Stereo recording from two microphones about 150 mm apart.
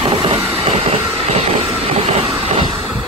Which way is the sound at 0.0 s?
35° right (ahead or behind).